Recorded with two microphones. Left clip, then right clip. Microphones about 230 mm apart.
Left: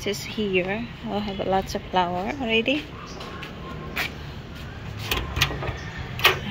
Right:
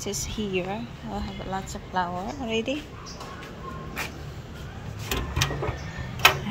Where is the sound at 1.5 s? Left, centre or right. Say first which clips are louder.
Left 7 dB; left.